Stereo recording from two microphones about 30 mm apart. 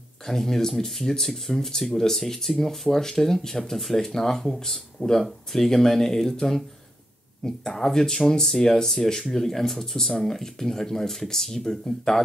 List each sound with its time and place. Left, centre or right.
0.3 s speech: centre